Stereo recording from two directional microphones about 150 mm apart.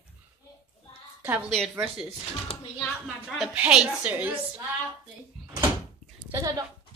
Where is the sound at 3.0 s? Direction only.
5° right (ahead or behind).